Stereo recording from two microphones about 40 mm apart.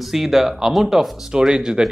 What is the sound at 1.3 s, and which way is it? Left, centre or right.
Speech, centre.